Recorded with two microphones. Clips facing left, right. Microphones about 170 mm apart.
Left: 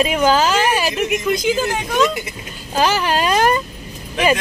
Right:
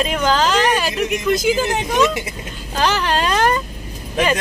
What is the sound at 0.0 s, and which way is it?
A woman's voice, 10° left (ahead or behind).